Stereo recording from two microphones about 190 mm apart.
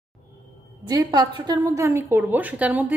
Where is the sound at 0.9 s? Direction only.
20° right (ahead or behind).